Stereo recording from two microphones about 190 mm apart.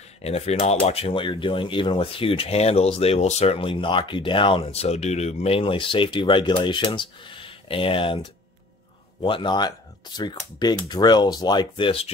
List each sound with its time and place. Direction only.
0.2 s speech: 35° left (ahead or behind)